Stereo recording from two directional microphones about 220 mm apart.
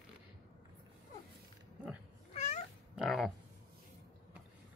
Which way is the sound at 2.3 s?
30° left (ahead or behind).